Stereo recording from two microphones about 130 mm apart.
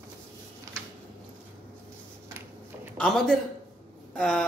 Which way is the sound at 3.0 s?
5° left (ahead or behind).